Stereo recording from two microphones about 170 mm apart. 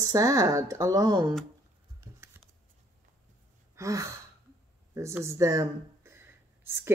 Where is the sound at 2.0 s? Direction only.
15° right (ahead or behind).